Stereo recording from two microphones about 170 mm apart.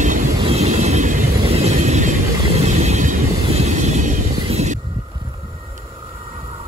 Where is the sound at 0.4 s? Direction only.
35° right (ahead or behind).